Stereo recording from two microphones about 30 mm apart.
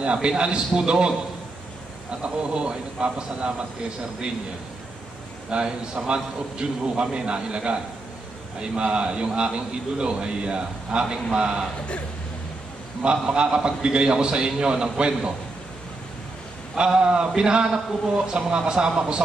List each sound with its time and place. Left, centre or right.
0.0 s a man's voice: right
5.5 s a man's voice: right
13.0 s a man's voice: right
16.7 s a man's voice: right